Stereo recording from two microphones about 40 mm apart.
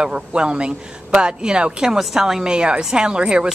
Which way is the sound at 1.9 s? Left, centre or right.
Centre.